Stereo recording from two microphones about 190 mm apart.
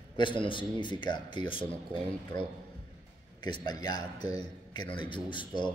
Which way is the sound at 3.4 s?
20° left (ahead or behind).